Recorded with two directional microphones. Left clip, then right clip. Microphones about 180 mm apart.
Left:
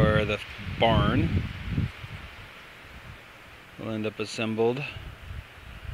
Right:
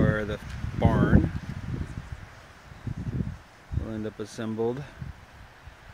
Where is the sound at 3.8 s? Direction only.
5° right (ahead or behind).